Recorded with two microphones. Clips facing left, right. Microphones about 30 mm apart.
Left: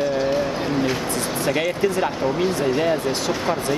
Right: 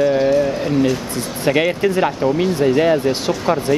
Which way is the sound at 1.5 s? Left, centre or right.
Right.